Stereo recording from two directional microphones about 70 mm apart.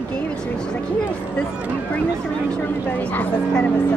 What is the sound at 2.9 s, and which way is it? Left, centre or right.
Speech, left.